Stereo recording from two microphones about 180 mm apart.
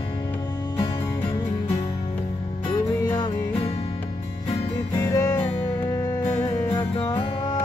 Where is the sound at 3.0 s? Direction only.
20° left (ahead or behind).